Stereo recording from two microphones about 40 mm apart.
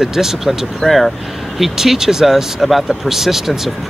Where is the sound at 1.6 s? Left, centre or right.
Centre.